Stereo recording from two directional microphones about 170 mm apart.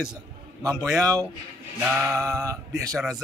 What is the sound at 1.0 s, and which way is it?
Speech, 20° right (ahead or behind).